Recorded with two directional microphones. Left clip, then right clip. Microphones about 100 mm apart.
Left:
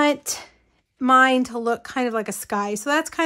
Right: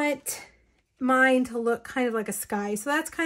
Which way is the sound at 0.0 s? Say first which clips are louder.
Left 7 dB; 65° left (ahead or behind).